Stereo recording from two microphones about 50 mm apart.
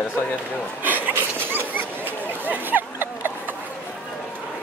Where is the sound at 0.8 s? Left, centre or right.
Right.